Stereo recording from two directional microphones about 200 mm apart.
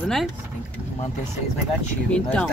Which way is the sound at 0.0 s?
Centre (ahead or behind).